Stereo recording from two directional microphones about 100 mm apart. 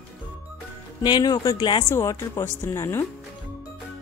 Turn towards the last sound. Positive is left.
turn(degrees=25)  # may be behind; listen again after turning